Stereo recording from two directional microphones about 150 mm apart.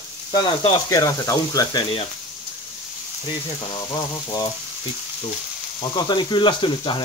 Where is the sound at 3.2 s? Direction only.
30° left (ahead or behind).